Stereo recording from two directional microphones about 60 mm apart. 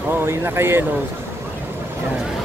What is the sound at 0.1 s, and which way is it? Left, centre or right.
Speech, right.